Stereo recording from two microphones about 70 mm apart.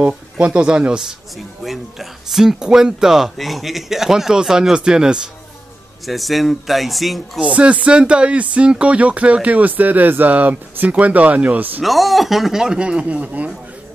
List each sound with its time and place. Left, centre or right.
0.0 s speech: centre
6.0 s speech: centre
7.3 s speech: centre
11.8 s speech: centre